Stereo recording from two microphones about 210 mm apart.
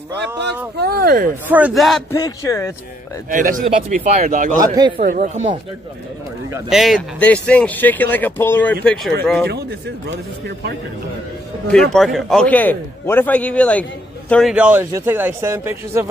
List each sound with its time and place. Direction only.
0.7 s speech: 45° right (ahead or behind)
1.5 s speech: 5° right (ahead or behind)
2.1 s a man's voice: 15° left (ahead or behind)
3.3 s speech: 40° right (ahead or behind)
4.6 s speech: 20° right (ahead or behind)
4.9 s speech: 40° right (ahead or behind)
6.7 s a man's voice: centre (ahead or behind)
11.6 s a man's voice: 5° left (ahead or behind); by 16.1 s 10° right (ahead or behind)